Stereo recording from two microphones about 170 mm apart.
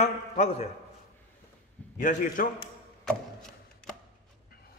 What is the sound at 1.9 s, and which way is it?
Speech, 50° left (ahead or behind).